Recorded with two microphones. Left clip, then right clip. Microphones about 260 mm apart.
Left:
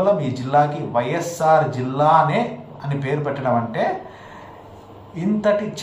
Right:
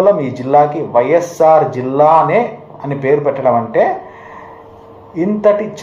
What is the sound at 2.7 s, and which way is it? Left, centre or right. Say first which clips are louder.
Speech: right 12 dB; centre.